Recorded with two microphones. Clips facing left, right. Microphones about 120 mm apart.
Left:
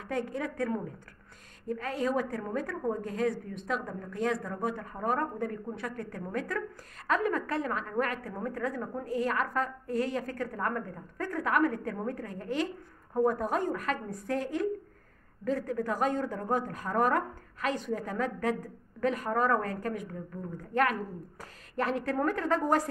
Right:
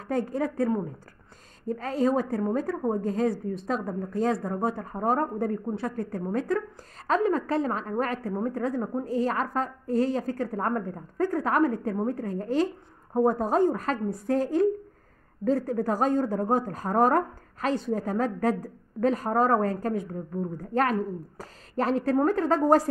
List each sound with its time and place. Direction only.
0.0 s speech: 35° right (ahead or behind)
1.7 s speech: 35° right (ahead or behind)